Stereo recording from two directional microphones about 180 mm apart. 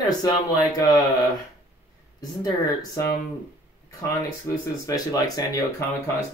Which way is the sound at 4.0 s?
15° left (ahead or behind).